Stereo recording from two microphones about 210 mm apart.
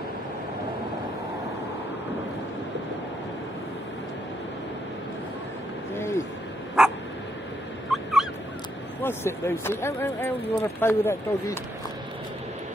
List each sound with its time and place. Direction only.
5.9 s a sound: 10° left (ahead or behind)
7.9 s dog: centre (ahead or behind)
9.0 s speech: 10° left (ahead or behind)